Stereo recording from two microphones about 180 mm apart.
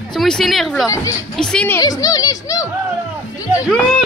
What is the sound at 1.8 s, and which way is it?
Speech, 20° left (ahead or behind).